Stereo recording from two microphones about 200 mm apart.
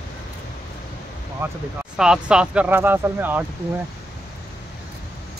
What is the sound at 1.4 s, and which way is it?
Speech, 10° right (ahead or behind).